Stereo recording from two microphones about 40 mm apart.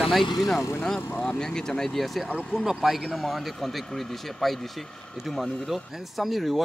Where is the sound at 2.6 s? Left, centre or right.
Centre.